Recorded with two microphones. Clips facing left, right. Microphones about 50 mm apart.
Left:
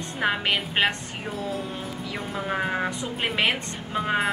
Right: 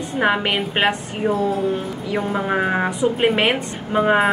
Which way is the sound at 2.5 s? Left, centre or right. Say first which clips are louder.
Right 5 dB; right.